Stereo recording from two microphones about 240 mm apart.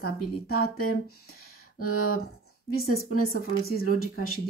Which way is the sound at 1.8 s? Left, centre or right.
Left.